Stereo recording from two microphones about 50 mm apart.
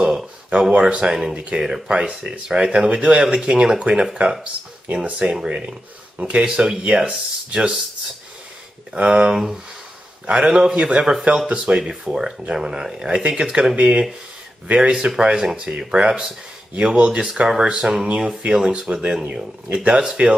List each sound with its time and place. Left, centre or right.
0.5 s speech: right
8.9 s speech: right
10.2 s speech: centre
13.7 s speech: right
18.9 s speech: centre
19.7 s speech: centre